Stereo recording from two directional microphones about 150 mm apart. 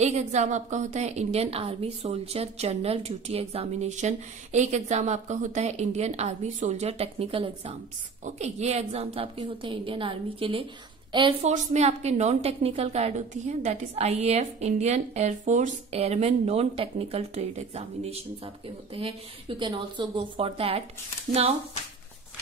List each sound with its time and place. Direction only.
0.0 s a woman's voice: 50° right (ahead or behind); by 11.3 s 30° right (ahead or behind)
11.4 s a woman's voice: 50° right (ahead or behind)
19.6 s a woman's voice: 30° right (ahead or behind)